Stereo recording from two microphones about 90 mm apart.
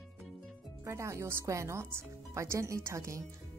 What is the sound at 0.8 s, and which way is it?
Speech, 30° right (ahead or behind).